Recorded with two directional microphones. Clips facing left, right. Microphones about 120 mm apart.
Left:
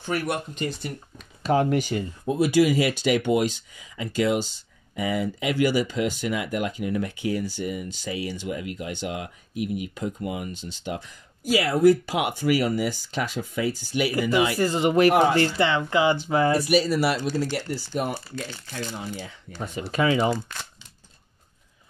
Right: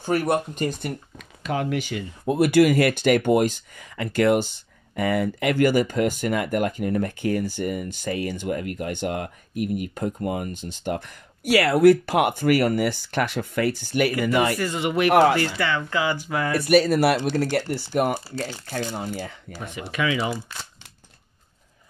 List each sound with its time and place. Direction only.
0.0 s speech: 45° right (ahead or behind)
1.1 s speech: 35° left (ahead or behind)
2.2 s speech: 60° right (ahead or behind)
14.6 s speech: 35° left (ahead or behind)
16.5 s speech: 55° right (ahead or behind)
18.3 s speech: 40° right (ahead or behind)
18.9 s speech: 55° right (ahead or behind)
19.9 s speech: 35° left (ahead or behind)